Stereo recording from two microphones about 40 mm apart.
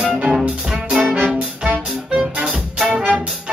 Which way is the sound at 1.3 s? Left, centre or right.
Right.